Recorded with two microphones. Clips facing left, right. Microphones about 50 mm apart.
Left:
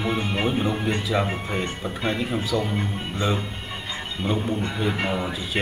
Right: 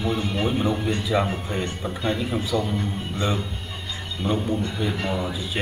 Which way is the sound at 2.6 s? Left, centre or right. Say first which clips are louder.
Even; left.